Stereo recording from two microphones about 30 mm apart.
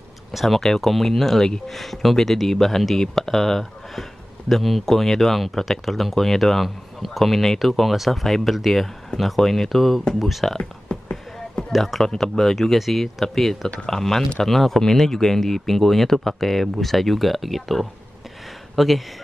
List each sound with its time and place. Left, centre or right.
0.3 s speech: centre
10.9 s a sound: left
12.2 s speech: centre
12.7 s speech: centre
13.0 s speech: centre